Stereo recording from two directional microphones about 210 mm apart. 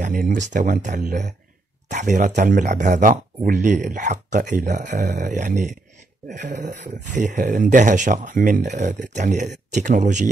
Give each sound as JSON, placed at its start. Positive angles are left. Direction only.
{"t": 0.0, "sound": "speech", "side_deg": -40}